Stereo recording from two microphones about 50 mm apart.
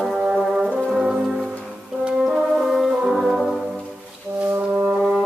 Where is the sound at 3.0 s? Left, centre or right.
Centre.